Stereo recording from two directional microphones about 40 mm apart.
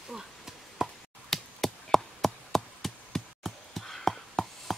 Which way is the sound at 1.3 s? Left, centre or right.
Centre.